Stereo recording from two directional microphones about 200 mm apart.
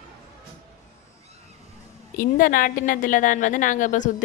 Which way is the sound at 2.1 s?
45° left (ahead or behind).